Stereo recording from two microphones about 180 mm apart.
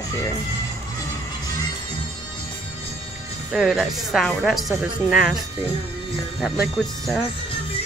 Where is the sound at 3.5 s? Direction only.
5° right (ahead or behind).